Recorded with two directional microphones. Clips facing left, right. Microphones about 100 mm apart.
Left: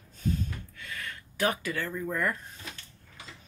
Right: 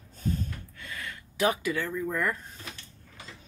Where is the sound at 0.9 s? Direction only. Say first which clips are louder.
Even; 20° right (ahead or behind).